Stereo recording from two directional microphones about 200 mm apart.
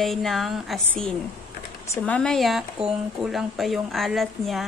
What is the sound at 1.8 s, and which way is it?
A woman's voice, 10° left (ahead or behind).